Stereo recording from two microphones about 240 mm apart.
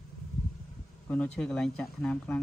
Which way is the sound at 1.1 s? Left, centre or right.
Centre.